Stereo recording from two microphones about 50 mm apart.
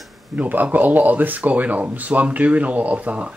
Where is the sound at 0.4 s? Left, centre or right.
Right.